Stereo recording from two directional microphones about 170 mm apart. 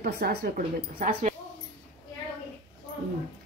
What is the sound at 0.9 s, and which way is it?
Speech, 45° right (ahead or behind).